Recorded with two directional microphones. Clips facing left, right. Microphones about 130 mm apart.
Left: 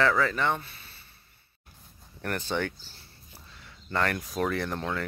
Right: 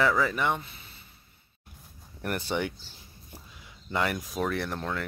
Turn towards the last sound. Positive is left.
turn(degrees=0)  # may be behind; listen again after turning